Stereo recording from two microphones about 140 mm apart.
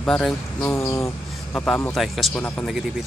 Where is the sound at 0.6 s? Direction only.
20° left (ahead or behind).